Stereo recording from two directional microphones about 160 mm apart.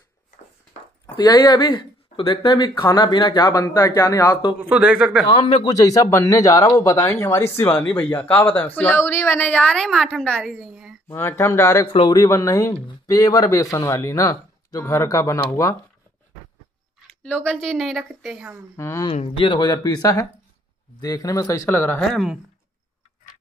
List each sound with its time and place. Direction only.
1.1 s speech: 25° left (ahead or behind)
3.6 s speech: 15° left (ahead or behind)
4.6 s a woman's voice: 10° right (ahead or behind)
5.3 s speech: 30° left (ahead or behind); by 11.0 s 5° right (ahead or behind)
11.1 s speech: 15° left (ahead or behind)
17.2 s a woman's voice: 5° left (ahead or behind)
18.8 s speech: 15° left (ahead or behind)
19.0 s speech: 35° left (ahead or behind); by 22.2 s 10° left (ahead or behind)